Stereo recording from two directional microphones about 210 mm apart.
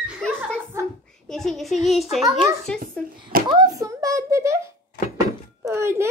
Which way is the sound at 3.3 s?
45° right (ahead or behind).